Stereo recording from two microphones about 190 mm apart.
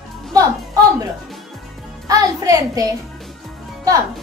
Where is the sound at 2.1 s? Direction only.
20° right (ahead or behind).